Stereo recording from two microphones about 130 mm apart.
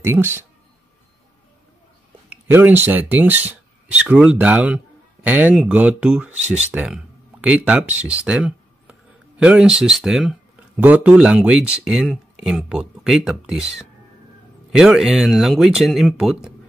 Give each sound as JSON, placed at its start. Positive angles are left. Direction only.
{"t": 0.0, "sound": "speech", "side_deg": -15}
{"t": 2.2, "sound": "speech", "side_deg": -15}